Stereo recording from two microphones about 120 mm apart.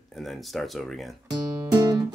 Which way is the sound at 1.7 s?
35° right (ahead or behind).